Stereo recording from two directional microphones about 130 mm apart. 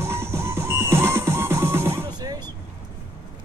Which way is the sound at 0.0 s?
20° right (ahead or behind).